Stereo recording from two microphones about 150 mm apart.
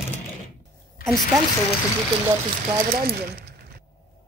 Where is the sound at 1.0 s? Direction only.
Centre (ahead or behind).